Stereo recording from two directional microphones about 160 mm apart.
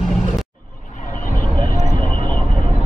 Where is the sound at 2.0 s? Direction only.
30° right (ahead or behind).